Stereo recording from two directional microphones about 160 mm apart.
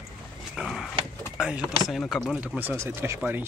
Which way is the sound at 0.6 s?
5° right (ahead or behind).